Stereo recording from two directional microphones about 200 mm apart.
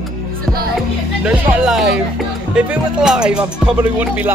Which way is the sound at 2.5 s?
5° right (ahead or behind).